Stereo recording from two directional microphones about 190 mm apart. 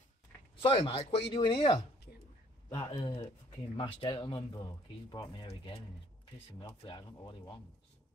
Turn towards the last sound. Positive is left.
turn(degrees=25)  # may be behind; listen again after turning